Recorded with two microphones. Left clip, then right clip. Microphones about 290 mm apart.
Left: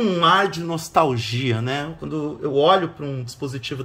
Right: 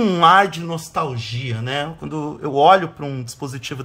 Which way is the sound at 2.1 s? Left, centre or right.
Centre.